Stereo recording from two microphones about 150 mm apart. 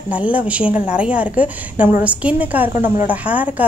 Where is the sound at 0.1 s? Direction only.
10° right (ahead or behind).